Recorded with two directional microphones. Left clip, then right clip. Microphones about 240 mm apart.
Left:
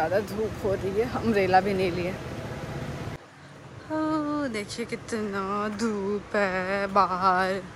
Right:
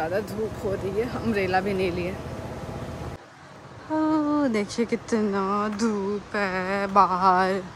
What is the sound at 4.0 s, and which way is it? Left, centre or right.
Speech, centre.